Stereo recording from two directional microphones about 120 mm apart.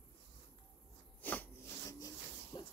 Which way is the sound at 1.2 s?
15° left (ahead or behind).